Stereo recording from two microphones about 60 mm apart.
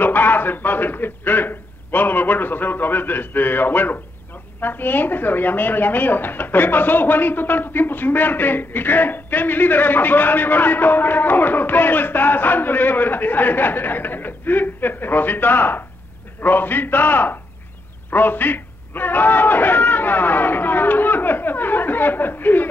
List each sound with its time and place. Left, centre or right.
0.0 s a woman's voice: left